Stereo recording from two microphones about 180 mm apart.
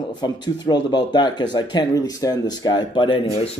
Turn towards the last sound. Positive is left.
turn(degrees=30)  # may be behind; listen again after turning